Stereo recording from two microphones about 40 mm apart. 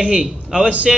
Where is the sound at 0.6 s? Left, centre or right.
Right.